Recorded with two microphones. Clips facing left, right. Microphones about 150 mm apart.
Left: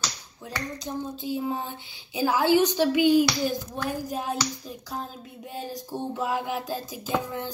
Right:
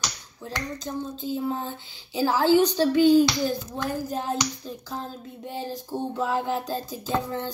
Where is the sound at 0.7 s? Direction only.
15° left (ahead or behind).